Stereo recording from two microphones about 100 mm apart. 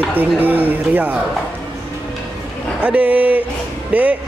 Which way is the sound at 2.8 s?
15° right (ahead or behind).